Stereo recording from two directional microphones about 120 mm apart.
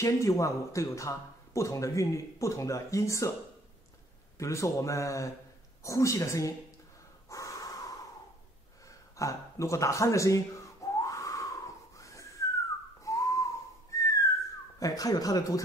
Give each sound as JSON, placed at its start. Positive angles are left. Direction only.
{"t": 0.0, "sound": "speech", "side_deg": 25}
{"t": 4.4, "sound": "speech", "side_deg": 25}
{"t": 7.2, "sound": "crow", "side_deg": 25}
{"t": 9.1, "sound": "a sound", "side_deg": 25}
{"t": 13.0, "sound": "whistling", "side_deg": 25}
{"t": 14.8, "sound": "speech", "side_deg": 30}